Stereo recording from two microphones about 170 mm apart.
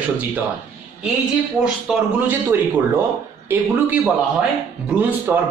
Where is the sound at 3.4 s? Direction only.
10° right (ahead or behind).